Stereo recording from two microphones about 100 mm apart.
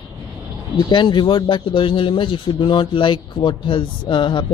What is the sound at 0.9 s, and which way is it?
Speech, 50° left (ahead or behind).